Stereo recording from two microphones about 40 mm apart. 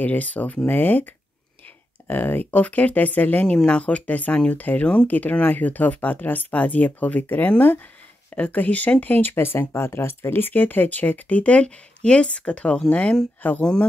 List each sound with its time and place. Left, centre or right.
0.0 s speech: left
0.7 s speech: left
2.0 s speech: left
2.6 s speech: left
9.4 s speech: left